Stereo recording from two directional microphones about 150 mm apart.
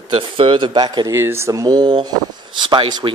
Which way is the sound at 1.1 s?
15° right (ahead or behind).